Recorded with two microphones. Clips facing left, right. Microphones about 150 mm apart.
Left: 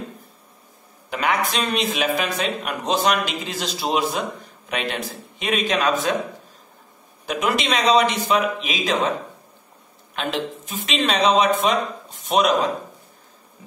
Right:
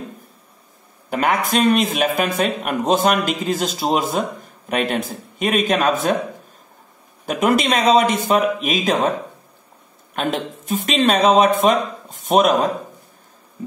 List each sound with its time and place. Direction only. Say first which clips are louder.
1.1 s speech: right 4 dB; 45° right (ahead or behind)
7.2 s speech: right 5 dB; 50° right (ahead or behind)
10.1 s speech: right 3 dB; 50° right (ahead or behind)